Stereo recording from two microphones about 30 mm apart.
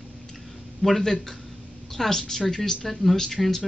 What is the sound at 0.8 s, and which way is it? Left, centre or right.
Speech, centre.